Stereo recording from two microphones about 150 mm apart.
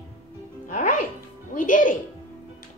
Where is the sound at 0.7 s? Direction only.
60° left (ahead or behind).